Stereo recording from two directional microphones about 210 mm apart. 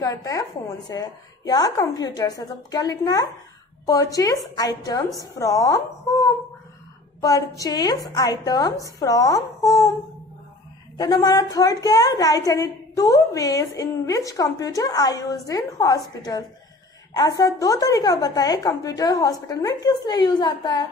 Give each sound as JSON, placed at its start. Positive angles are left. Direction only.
{"t": 0.0, "sound": "a woman's voice", "side_deg": 15}
{"t": 11.0, "sound": "a woman's voice", "side_deg": 20}